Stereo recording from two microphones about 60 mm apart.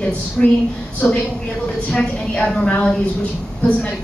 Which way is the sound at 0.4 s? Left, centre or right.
Centre.